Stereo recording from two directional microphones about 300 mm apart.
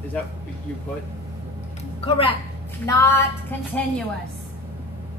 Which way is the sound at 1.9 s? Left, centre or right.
Centre.